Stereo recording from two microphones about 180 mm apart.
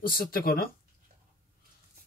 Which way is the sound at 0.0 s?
55° left (ahead or behind).